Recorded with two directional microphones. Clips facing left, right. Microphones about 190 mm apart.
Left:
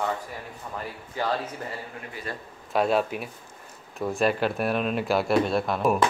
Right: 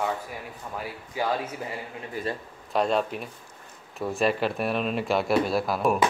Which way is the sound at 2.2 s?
50° right (ahead or behind).